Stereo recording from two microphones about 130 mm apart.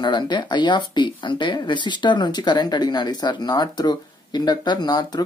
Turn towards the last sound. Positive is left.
turn(degrees=30)  # may be behind; listen again after turning